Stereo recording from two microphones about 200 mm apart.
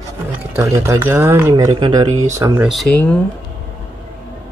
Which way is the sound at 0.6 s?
15° right (ahead or behind).